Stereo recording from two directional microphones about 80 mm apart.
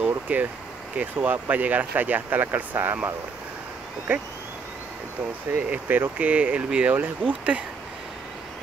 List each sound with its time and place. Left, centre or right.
0.0 s a sound: centre
0.9 s speech: right
5.5 s speech: right